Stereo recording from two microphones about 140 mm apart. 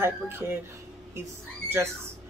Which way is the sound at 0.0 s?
15° right (ahead or behind).